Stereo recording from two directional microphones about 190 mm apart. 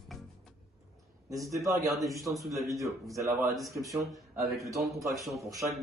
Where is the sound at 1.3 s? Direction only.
15° right (ahead or behind).